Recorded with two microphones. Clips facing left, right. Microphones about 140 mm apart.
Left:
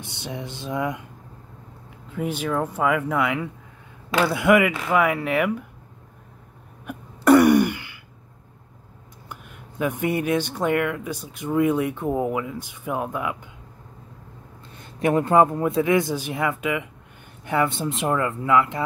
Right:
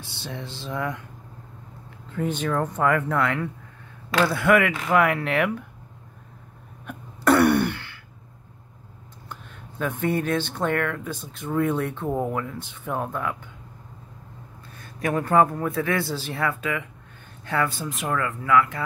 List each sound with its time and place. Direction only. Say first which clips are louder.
0.0 s speech: left 3 dB; 20° left (ahead or behind)
2.0 s speech: even; 5° left (ahead or behind)
6.9 s throat clearing: left 5 dB; 10° left (ahead or behind)
9.3 s speech: even; 10° left (ahead or behind)
14.7 s speech: left 5 dB; 25° left (ahead or behind)